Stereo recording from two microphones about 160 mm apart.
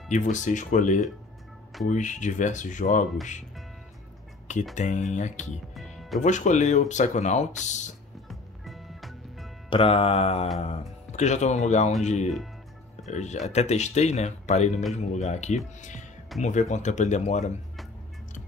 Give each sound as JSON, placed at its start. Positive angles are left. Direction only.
{"t": 0.1, "sound": "speech", "side_deg": 50}
{"t": 4.7, "sound": "speech", "side_deg": 50}
{"t": 5.8, "sound": "music", "side_deg": 0}
{"t": 6.2, "sound": "speech", "side_deg": 50}
{"t": 8.3, "sound": "music", "side_deg": 0}
{"t": 9.7, "sound": "mantra", "side_deg": 35}
{"t": 10.6, "sound": "speech", "side_deg": 45}